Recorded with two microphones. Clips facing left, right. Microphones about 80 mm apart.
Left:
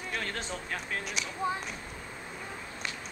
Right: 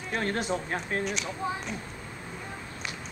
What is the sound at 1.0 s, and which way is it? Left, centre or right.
Speech, centre.